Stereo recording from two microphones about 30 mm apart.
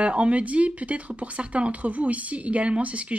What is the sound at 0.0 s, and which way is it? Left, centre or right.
Speech, right.